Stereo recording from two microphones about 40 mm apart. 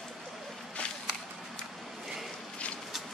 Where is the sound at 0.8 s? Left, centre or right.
Left.